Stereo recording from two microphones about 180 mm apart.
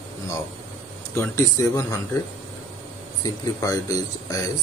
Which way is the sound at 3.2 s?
20° left (ahead or behind).